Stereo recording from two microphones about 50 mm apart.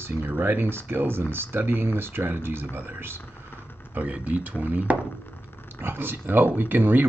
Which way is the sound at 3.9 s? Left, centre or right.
Right.